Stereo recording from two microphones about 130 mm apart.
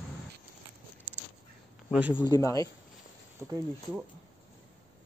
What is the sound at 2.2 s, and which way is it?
Speech, 25° left (ahead or behind).